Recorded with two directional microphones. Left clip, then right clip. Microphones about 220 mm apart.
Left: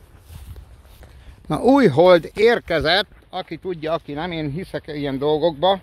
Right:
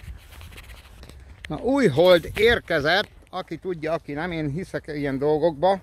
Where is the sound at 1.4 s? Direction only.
45° left (ahead or behind).